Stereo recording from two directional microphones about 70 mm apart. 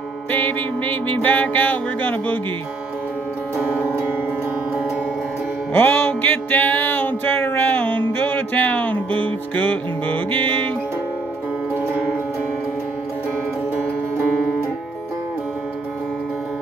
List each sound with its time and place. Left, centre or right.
0.3 s music: left
5.7 s music: left